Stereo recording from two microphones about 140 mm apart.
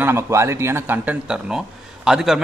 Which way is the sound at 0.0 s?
20° right (ahead or behind).